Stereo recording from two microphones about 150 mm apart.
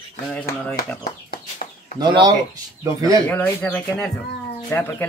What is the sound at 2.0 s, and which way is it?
Speech, 30° right (ahead or behind).